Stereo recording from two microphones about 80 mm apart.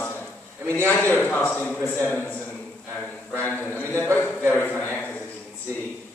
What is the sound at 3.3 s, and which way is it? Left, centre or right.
A man's voice, centre.